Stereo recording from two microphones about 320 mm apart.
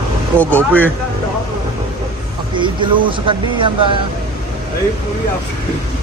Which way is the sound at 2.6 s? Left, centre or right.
Centre.